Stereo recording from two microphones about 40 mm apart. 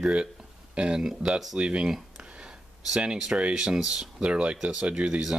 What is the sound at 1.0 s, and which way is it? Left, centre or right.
Speech, centre.